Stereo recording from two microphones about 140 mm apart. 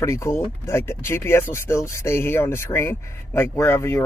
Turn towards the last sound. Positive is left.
turn(degrees=15)  # may be behind; listen again after turning